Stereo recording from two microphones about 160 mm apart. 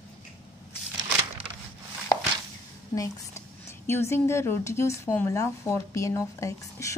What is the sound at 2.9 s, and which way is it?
A woman's voice, 20° left (ahead or behind).